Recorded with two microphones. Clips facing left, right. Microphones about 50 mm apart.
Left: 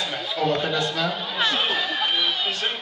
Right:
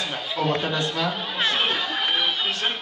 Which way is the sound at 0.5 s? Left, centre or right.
Right.